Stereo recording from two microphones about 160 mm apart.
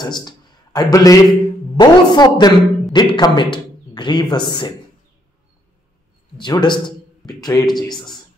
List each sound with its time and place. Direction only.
0.0 s a man's voice: 25° left (ahead or behind)
6.3 s a man's voice: 30° left (ahead or behind)